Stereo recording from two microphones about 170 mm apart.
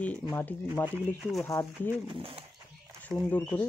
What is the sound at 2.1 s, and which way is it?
Speech, 30° right (ahead or behind).